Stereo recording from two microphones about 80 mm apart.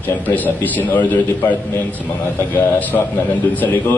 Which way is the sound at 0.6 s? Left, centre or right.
Left.